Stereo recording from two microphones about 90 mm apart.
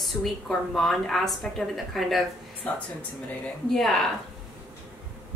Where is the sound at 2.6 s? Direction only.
15° left (ahead or behind).